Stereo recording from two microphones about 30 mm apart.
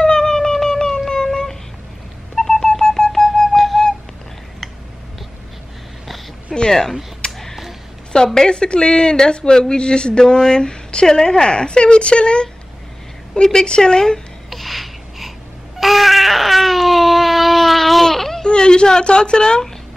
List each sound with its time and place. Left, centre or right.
0.0 s siren: left
0.7 s music: left
2.3 s telephone dialing: left
3.5 s flute: centre
6.5 s a sound: centre
7.2 s a sound: left
8.4 s speech: left
13.3 s speech: left
14.5 s snort: centre
15.8 s baby cry: centre
18.0 s babbling: centre
18.4 s speech: left